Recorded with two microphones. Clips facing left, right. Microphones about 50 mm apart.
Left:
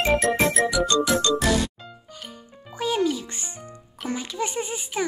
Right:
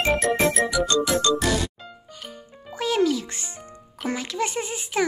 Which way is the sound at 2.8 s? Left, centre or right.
Right.